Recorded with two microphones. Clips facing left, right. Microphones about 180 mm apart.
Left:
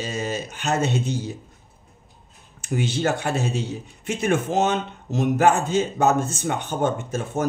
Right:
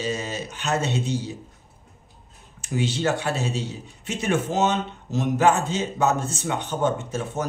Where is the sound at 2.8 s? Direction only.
50° left (ahead or behind).